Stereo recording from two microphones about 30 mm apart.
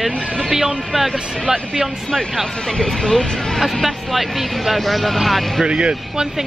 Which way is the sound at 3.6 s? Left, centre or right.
Centre.